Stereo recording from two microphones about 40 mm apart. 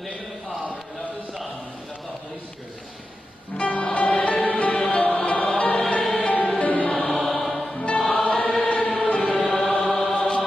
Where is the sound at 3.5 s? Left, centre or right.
Left.